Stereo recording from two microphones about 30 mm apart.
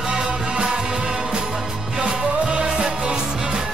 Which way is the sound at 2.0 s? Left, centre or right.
Right.